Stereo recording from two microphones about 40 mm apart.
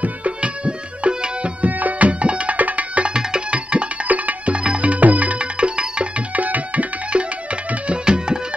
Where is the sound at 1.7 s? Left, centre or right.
Right.